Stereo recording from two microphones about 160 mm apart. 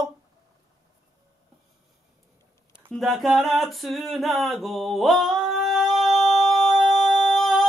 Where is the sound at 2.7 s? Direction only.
5° left (ahead or behind).